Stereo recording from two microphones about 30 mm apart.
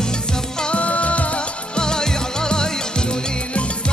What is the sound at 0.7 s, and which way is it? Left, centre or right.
Music, left.